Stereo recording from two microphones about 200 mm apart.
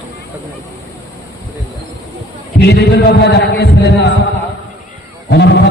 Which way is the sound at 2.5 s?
55° left (ahead or behind).